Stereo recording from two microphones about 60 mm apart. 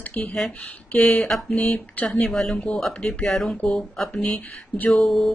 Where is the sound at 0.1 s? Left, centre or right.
Centre.